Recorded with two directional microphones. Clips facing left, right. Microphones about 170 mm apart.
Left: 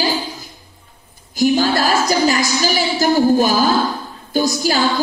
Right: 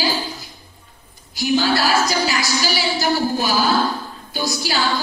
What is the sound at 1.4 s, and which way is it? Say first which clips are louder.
A woman's voice: left 3 dB; 45° left (ahead or behind).